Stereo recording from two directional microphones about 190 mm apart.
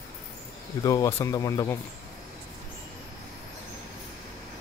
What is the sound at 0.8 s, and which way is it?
Speech, 15° left (ahead or behind).